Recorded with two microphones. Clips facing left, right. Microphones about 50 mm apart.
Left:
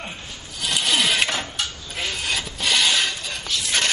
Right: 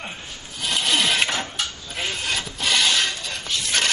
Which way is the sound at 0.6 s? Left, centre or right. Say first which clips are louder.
Even; centre.